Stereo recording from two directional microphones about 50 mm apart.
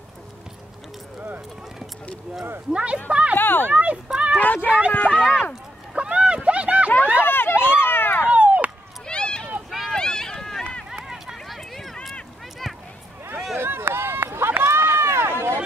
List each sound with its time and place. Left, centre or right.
2.7 s speech: right
3.3 s speech: left
3.7 s speech: right
4.4 s speech: left
5.3 s speech: centre
5.9 s a sound: right
7.2 s run: left
8.3 s a sound: right
9.0 s run: centre
9.7 s run: centre
9.9 s run: centre
11.3 s a sound: centre
13.6 s run: right